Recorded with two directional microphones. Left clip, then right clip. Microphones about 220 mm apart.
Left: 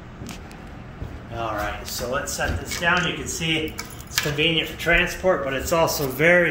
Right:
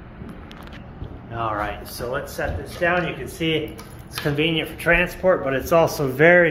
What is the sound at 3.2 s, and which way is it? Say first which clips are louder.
Speech: right 1 dB; 10° right (ahead or behind).